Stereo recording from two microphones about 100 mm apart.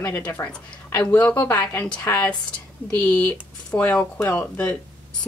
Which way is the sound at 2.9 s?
15° left (ahead or behind).